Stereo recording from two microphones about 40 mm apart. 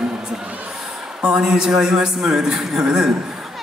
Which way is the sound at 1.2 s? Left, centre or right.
Centre.